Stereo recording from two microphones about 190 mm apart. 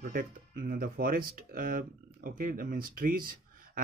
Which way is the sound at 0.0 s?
45° right (ahead or behind).